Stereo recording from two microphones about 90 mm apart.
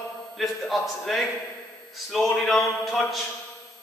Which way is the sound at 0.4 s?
Centre (ahead or behind).